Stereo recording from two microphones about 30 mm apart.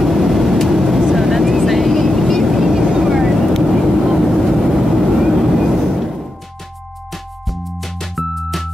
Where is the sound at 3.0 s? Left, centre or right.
Centre.